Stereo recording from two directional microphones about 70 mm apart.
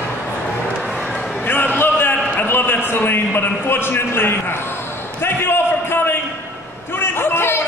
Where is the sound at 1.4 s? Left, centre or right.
Left.